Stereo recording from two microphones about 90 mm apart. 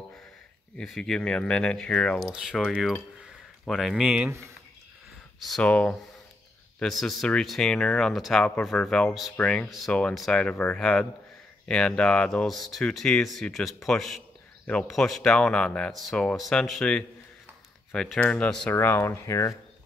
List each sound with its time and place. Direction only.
0.7 s speech: 5° left (ahead or behind)
2.3 s speech: centre (ahead or behind)
4.0 s speech: 10° right (ahead or behind)
5.6 s speech: 15° left (ahead or behind)
6.8 s speech: centre (ahead or behind)
9.7 s speech: centre (ahead or behind)
18.7 s speech: 25° left (ahead or behind)